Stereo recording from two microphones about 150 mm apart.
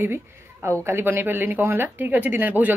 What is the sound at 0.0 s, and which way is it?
A woman's voice, 15° right (ahead or behind).